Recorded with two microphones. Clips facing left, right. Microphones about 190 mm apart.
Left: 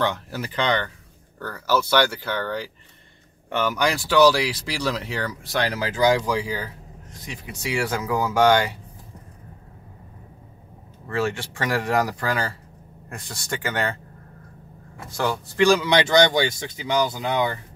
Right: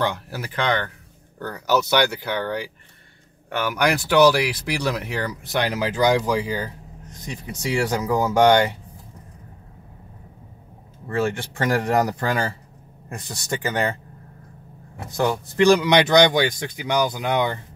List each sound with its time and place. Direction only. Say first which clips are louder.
0.0 s speech: even; 10° right (ahead or behind)
11.1 s speech: right 2 dB; 20° right (ahead or behind)
15.1 s speech: right 2 dB; 20° right (ahead or behind)